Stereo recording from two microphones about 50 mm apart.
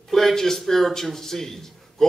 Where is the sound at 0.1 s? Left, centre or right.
Centre.